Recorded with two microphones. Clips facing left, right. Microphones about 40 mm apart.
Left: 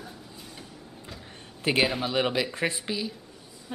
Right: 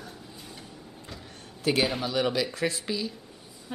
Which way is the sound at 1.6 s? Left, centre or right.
Left.